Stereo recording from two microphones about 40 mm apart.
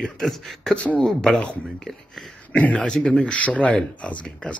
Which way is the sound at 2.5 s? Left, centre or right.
Left.